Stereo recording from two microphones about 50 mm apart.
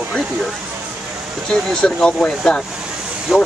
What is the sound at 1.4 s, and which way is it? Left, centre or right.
Speech, centre.